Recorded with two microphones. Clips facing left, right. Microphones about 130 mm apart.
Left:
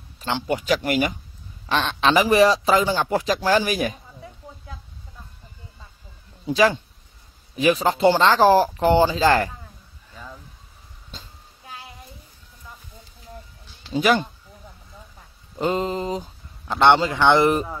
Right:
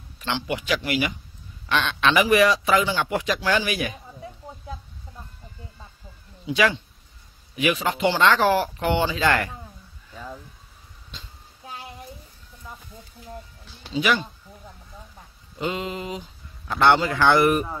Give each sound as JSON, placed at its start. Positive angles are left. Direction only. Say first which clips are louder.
{"t": 0.2, "sound": "a man's voice", "louder": "left 3 dB", "side_deg": 40}
{"t": 6.4, "sound": "a man's voice", "louder": "left 3 dB", "side_deg": 40}
{"t": 13.9, "sound": "speech", "louder": "left 4 dB", "side_deg": 45}
{"t": 15.5, "sound": "speech", "louder": "left 5 dB", "side_deg": 40}
{"t": 16.7, "sound": "speech", "louder": "left 2 dB", "side_deg": 25}